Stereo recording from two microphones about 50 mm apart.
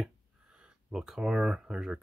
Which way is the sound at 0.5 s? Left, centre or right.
Right.